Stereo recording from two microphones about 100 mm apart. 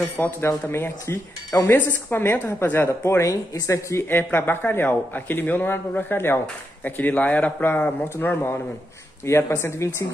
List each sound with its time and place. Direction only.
0.2 s a woman's voice: 25° left (ahead or behind)